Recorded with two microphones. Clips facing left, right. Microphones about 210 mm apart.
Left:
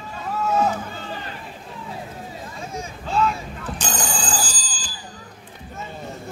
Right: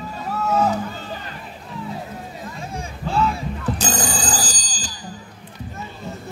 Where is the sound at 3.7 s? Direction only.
40° right (ahead or behind).